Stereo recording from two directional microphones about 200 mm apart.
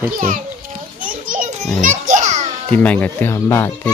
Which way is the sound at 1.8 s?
40° right (ahead or behind).